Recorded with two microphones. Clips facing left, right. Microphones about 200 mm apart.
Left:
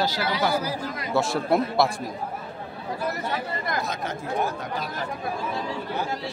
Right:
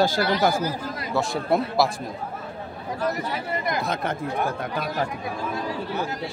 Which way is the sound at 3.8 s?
55° right (ahead or behind).